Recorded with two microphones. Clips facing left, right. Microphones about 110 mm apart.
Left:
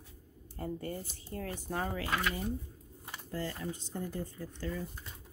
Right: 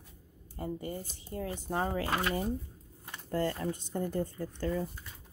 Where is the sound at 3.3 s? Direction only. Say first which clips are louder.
Right 6 dB; 55° right (ahead or behind).